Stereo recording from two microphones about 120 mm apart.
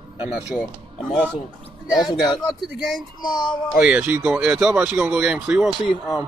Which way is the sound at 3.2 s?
35° left (ahead or behind).